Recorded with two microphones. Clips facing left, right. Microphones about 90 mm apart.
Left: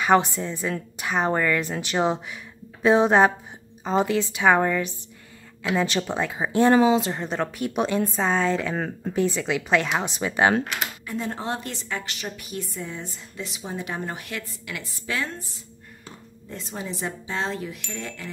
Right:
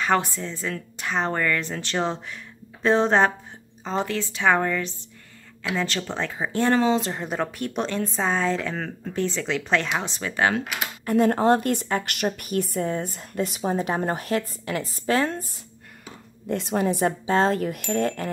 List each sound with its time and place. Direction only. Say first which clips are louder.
0.0 s a woman's voice: left 3 dB; 20° left (ahead or behind); by 8.7 s centre (ahead or behind)
8.7 s a woman's voice: left 3 dB; 15° left (ahead or behind)
10.6 s speech: left 1 dB; 5° right (ahead or behind)
11.1 s a woman's voice: right 12 dB; 55° right (ahead or behind)
16.4 s a woman's voice: right 10 dB; 65° right (ahead or behind); by 18.3 s 50° right (ahead or behind)